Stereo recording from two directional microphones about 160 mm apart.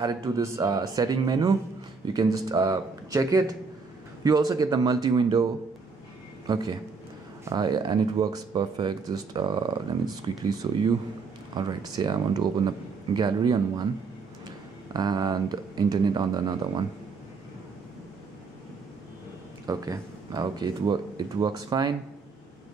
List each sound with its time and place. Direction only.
0.0 s speech: 25° right (ahead or behind)
14.9 s speech: 25° right (ahead or behind)
19.6 s speech: 25° right (ahead or behind)